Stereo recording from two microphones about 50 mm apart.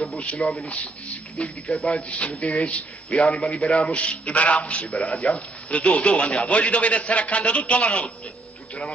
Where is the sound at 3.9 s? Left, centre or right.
Left.